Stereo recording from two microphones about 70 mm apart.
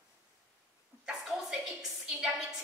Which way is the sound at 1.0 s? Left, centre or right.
Centre.